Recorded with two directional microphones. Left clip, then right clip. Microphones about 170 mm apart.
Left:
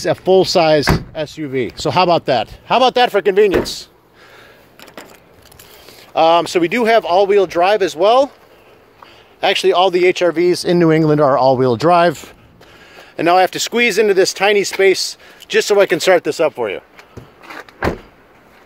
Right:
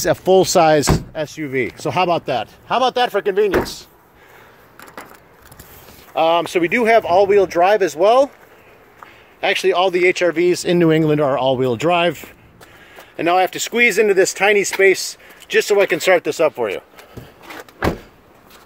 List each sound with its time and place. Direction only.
0.0 s speech: centre (ahead or behind)
1.2 s speech: 20° left (ahead or behind); by 3.9 s 60° left (ahead or behind)
6.1 s speech: 35° left (ahead or behind)
6.7 s speech: 10° left (ahead or behind)
9.4 s speech: 25° left (ahead or behind)
13.1 s speech: 35° left (ahead or behind)
13.7 s speech: 25° left (ahead or behind)
16.3 s speech: 10° left (ahead or behind)